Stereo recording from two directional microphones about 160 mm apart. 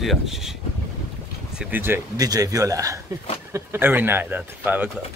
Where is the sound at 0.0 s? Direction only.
Centre (ahead or behind).